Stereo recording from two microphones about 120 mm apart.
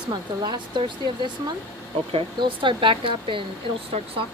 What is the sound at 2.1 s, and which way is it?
Speech, 45° right (ahead or behind).